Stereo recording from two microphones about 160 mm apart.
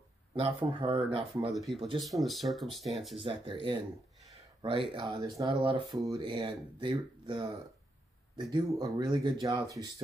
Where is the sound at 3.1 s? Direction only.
35° right (ahead or behind).